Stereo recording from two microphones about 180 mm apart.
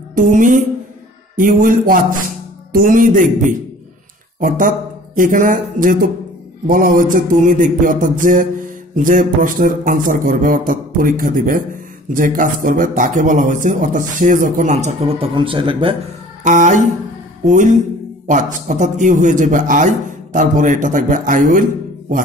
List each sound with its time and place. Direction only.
0.1 s mantra: 45° right (ahead or behind)
1.3 s speech: 50° right (ahead or behind); by 16.0 s 30° right (ahead or behind)
16.4 s speech: 45° right (ahead or behind)